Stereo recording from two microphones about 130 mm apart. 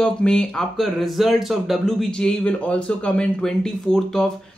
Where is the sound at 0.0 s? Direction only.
5° left (ahead or behind).